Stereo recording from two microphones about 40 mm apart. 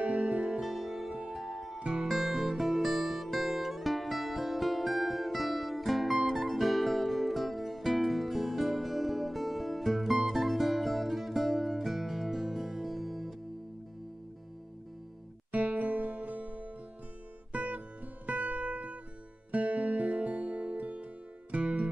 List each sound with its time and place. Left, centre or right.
0.2 s music: centre
0.6 s music: centre
15.5 s music: right